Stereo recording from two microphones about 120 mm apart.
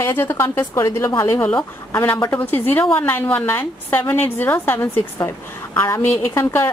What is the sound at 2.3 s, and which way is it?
A woman's voice, 15° left (ahead or behind).